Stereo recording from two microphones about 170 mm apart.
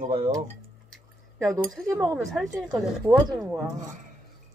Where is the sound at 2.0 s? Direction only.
5° left (ahead or behind).